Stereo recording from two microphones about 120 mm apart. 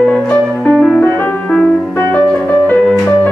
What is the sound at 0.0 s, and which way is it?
Music, 10° left (ahead or behind).